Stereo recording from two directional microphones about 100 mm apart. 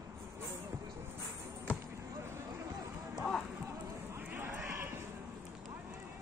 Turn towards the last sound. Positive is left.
turn(degrees=-25)  # may be behind; listen again after turning